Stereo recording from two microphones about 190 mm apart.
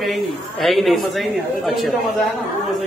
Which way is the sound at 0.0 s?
Centre (ahead or behind).